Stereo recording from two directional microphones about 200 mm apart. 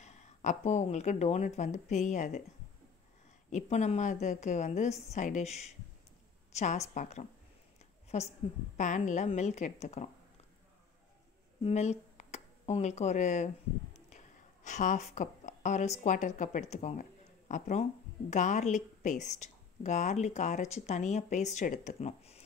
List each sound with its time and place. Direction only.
0.0 s a woman's voice: 35° left (ahead or behind)
3.4 s a woman's voice: 35° left (ahead or behind)
11.6 s speech: 35° left (ahead or behind)
14.1 s a sound: 35° left (ahead or behind)
16.0 s a woman's voice: 40° left (ahead or behind)